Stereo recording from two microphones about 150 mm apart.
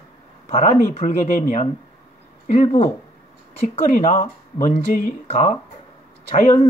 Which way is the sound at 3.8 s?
60° left (ahead or behind).